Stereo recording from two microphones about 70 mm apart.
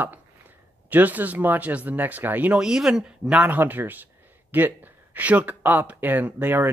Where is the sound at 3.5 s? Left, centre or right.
Right.